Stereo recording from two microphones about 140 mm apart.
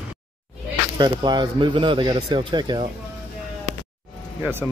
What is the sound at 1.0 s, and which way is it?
A man's voice, 35° right (ahead or behind).